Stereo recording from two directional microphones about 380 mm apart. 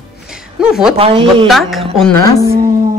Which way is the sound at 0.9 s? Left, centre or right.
Centre.